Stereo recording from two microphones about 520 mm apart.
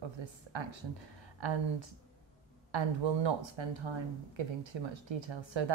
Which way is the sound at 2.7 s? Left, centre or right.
Right.